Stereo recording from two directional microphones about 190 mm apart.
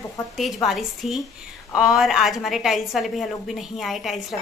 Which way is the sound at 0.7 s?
Centre (ahead or behind).